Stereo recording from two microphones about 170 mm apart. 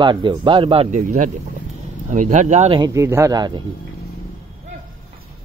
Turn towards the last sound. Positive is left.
turn(degrees=-25)  # may be behind; listen again after turning